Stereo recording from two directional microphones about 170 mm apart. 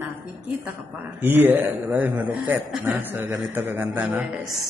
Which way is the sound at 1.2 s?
10° right (ahead or behind).